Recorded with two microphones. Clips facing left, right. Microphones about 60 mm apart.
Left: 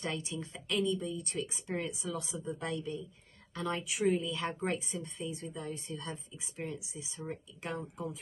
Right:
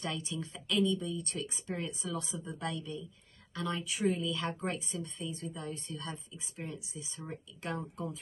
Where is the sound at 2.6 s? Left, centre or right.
Left.